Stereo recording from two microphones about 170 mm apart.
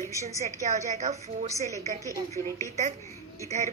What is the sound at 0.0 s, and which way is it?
Speech, 20° left (ahead or behind).